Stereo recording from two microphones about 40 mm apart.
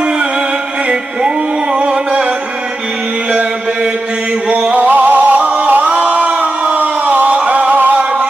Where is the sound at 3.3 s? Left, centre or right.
Right.